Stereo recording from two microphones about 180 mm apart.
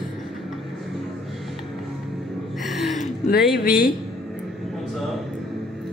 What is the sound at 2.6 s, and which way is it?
Gasp, centre (ahead or behind).